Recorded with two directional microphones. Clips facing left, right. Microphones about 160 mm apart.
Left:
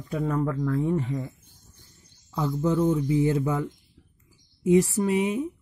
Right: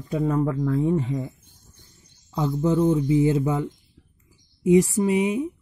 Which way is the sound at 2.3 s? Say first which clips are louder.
Right 3 dB; 20° right (ahead or behind).